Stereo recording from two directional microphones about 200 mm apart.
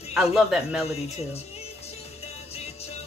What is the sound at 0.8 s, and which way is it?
Music, 30° left (ahead or behind).